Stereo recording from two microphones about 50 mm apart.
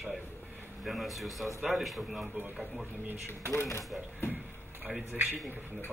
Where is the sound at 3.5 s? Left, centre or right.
Left.